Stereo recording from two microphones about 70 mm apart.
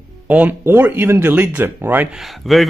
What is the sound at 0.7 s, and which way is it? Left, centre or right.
Speech, right.